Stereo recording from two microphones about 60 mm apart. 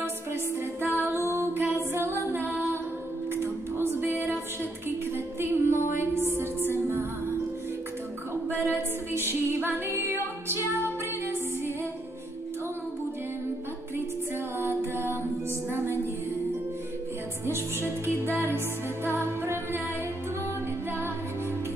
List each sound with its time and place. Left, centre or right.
0.3 s music: right
8.5 s music: right
14.6 s music: right
17.5 s music: right